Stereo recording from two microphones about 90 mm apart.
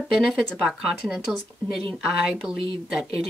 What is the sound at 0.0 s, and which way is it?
Speech, centre (ahead or behind).